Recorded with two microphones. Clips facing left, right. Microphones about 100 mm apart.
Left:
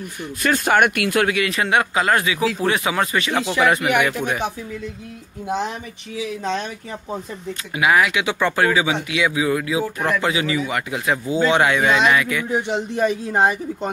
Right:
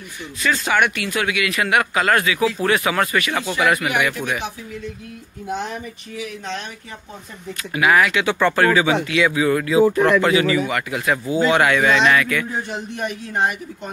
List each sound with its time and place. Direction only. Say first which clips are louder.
0.4 s speech: left 2 dB; 50° left (ahead or behind)
1.3 s speech: even; 35° left (ahead or behind)
7.7 s speech: right 1 dB; 20° left (ahead or behind)